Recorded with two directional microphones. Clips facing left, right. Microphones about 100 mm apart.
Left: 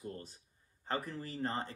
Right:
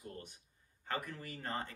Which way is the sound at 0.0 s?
35° left (ahead or behind).